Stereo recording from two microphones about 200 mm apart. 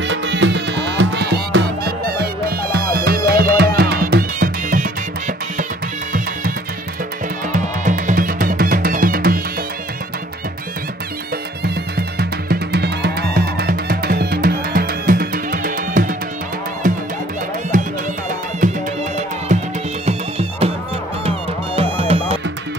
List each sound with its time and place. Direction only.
0.0 s music: 65° right (ahead or behind); by 5.7 s 40° right (ahead or behind)
7.5 s music: 40° right (ahead or behind)
12.2 s music: 50° right (ahead or behind); by 22.4 s 30° right (ahead or behind)